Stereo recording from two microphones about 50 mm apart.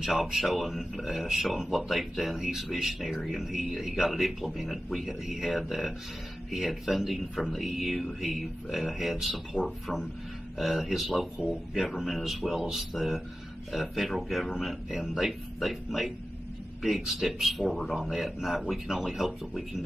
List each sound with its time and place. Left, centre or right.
0.0 s speech: centre
10.6 s speech: centre
11.4 s speech: centre
11.7 s speech: centre